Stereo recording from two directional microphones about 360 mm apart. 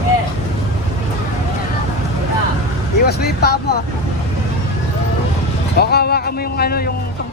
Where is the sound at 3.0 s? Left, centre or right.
Left.